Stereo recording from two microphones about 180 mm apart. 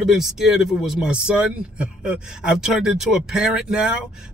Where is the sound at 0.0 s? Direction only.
Centre (ahead or behind).